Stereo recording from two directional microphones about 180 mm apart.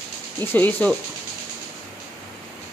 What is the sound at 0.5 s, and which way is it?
Speech, 10° left (ahead or behind).